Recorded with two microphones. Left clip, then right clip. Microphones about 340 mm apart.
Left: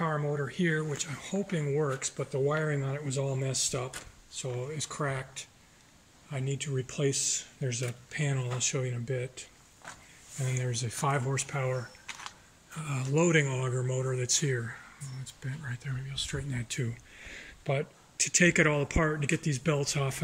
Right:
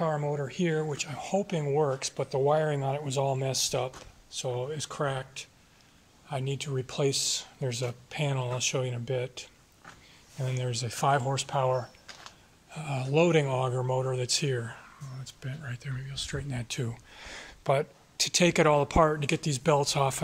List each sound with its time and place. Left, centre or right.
0.0 s speech: centre
10.5 s speech: centre
12.8 s speech: centre
17.1 s speech: centre